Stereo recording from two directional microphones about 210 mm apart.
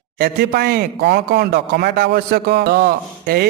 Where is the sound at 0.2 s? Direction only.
45° right (ahead or behind).